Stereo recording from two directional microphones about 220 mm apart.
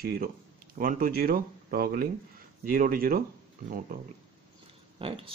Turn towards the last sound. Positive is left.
turn(degrees=-25)  # may be behind; listen again after turning